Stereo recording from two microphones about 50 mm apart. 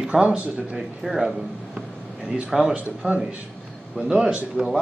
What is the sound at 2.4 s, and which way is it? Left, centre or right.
Speech, centre.